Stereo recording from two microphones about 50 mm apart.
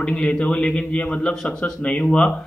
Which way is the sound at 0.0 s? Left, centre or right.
Left.